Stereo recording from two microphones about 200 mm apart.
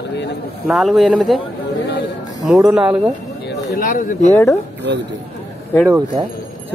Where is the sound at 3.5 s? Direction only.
45° left (ahead or behind).